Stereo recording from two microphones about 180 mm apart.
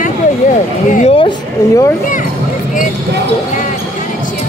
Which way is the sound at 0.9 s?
35° left (ahead or behind).